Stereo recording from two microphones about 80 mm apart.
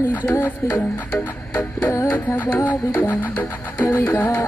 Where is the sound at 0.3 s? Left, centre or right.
Left.